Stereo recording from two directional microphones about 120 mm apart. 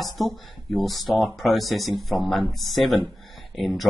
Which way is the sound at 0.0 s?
Centre (ahead or behind).